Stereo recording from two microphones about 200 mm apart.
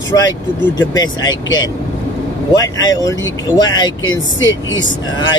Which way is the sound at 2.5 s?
20° left (ahead or behind).